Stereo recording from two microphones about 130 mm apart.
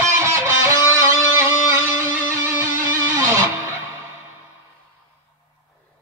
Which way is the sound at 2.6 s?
20° right (ahead or behind).